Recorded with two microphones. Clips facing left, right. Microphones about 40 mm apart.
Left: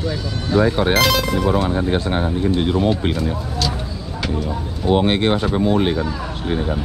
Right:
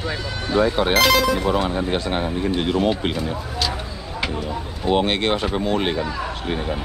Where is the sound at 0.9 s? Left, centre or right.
Centre.